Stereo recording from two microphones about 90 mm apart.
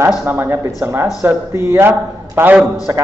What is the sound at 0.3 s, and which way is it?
A man's voice, 25° right (ahead or behind).